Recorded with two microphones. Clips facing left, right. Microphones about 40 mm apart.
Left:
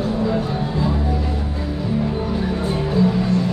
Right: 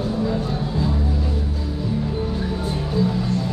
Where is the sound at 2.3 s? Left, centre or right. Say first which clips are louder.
Left 3 dB; left.